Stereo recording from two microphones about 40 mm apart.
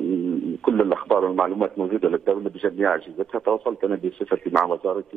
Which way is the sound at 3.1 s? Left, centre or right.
Centre.